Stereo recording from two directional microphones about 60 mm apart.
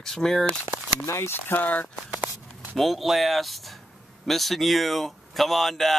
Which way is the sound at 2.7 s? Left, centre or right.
Centre.